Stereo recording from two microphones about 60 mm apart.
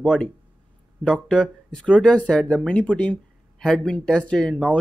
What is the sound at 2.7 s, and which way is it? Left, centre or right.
Speech, left.